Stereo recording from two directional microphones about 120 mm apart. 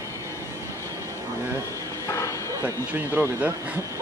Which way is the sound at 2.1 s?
25° left (ahead or behind).